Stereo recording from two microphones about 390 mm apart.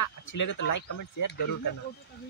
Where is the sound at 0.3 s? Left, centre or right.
Left.